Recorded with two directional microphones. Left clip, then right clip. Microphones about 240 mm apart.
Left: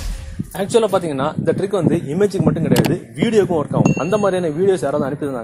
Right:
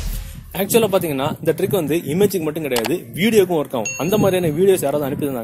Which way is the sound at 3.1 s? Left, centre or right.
Right.